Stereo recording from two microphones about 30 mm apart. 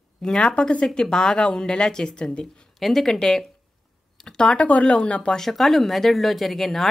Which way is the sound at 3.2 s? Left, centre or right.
Centre.